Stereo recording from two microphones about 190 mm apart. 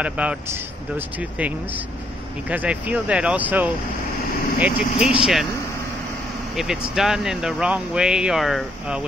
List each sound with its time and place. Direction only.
0.0 s speech: 5° right (ahead or behind)
2.5 s speech: 5° right (ahead or behind)
6.5 s speech: centre (ahead or behind)